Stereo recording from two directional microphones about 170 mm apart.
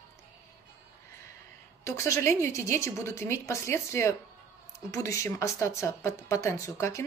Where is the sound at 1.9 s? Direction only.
15° left (ahead or behind).